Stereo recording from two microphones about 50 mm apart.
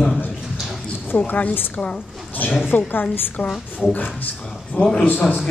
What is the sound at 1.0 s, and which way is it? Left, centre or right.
A woman's voice, left.